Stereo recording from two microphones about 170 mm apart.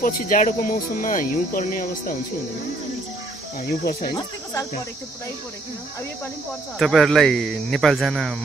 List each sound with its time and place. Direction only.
0.0 s speech: 50° left (ahead or behind)
3.6 s speech: 60° left (ahead or behind)
6.8 s speech: centre (ahead or behind)